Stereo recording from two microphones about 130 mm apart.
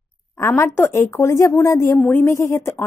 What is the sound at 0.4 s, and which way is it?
A woman's voice, 20° left (ahead or behind).